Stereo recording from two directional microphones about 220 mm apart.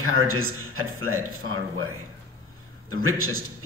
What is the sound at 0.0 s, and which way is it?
Speech, 70° right (ahead or behind).